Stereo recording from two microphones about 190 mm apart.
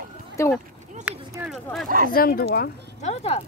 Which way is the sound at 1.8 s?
50° right (ahead or behind).